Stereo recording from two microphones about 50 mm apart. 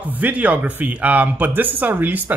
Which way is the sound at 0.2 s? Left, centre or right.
Right.